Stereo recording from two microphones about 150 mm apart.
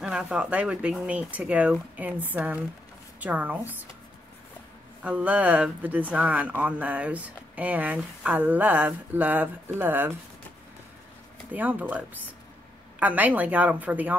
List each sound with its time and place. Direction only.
0.0 s speech: 5° right (ahead or behind)
5.0 s speech: 10° right (ahead or behind)
11.5 s speech: 10° right (ahead or behind)